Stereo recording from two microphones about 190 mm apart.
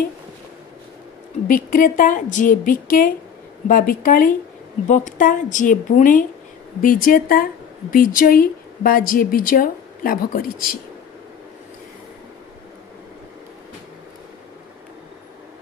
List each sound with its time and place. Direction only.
1.5 s a woman's voice: 45° left (ahead or behind)